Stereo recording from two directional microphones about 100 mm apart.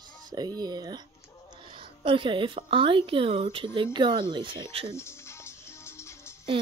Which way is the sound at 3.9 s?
50° right (ahead or behind).